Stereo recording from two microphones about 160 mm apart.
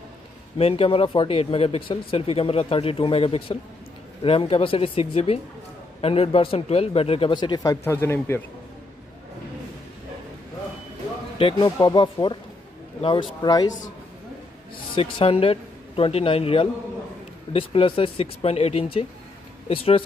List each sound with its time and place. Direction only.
0.6 s speech: 35° left (ahead or behind); by 8.4 s 15° left (ahead or behind)
11.3 s speech: 30° left (ahead or behind)
15.0 s speech: 35° left (ahead or behind)